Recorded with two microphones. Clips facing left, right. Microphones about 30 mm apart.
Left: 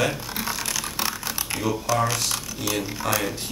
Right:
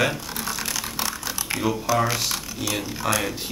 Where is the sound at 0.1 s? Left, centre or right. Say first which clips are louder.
Left 1 dB; centre.